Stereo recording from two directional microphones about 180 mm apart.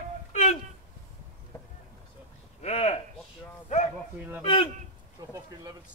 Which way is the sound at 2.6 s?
35° left (ahead or behind).